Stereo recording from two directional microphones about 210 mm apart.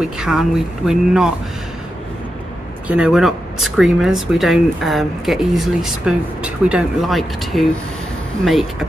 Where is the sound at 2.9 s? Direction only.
5° right (ahead or behind).